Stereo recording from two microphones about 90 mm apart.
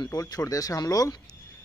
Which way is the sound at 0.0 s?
45° left (ahead or behind).